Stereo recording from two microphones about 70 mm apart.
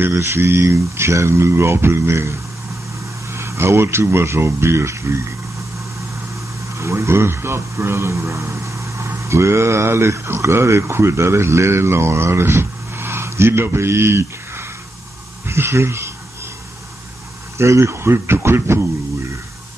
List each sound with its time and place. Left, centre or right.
0.1 s speech: right
6.8 s a man's voice: right
15.4 s a sound: right
17.6 s speech: right